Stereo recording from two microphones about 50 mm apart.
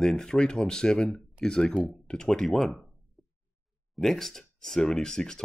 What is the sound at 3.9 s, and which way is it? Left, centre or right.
Speech, centre.